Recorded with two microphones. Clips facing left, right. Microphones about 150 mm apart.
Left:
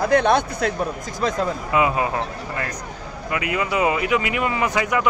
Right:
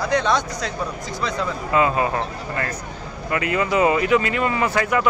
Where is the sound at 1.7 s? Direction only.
15° left (ahead or behind).